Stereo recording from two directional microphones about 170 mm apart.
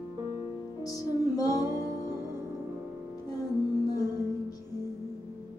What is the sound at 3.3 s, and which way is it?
Music, 20° left (ahead or behind).